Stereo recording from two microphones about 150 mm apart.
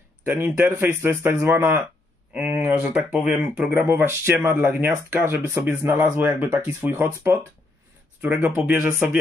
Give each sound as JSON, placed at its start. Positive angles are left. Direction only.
{"t": 0.2, "sound": "speech", "side_deg": -15}